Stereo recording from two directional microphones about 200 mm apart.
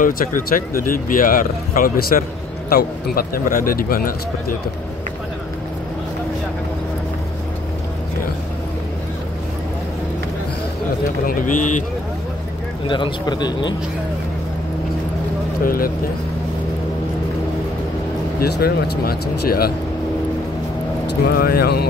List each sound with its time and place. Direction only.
0.0 s speech: 45° left (ahead or behind)
11.2 s speech: 40° left (ahead or behind)
12.8 s speech: 25° left (ahead or behind)
15.6 s speech: 45° left (ahead or behind)
18.4 s speech: 50° left (ahead or behind)
21.1 s speech: 50° left (ahead or behind)